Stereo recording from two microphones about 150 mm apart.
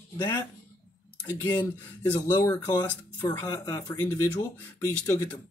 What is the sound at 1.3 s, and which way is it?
Speech, 30° left (ahead or behind).